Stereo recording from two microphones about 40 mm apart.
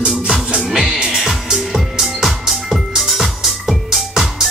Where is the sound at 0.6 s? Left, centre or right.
Centre.